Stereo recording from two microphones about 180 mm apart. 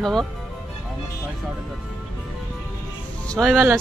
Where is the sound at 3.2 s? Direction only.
5° left (ahead or behind).